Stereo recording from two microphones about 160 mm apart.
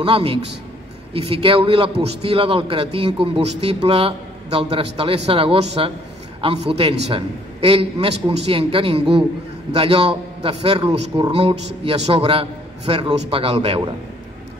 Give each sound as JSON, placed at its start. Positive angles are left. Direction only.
{"t": 0.0, "sound": "a man's voice", "side_deg": -35}
{"t": 10.4, "sound": "a man's voice", "side_deg": -35}
{"t": 11.3, "sound": "a man's voice", "side_deg": -35}